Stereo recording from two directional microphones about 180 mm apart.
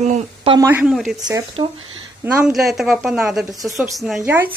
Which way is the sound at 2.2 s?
5° right (ahead or behind).